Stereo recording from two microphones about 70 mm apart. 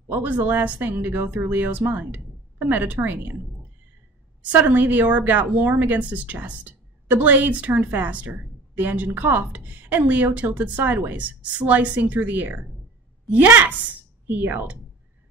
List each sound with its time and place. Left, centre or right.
0.1 s a woman's voice: right
4.4 s a woman's voice: right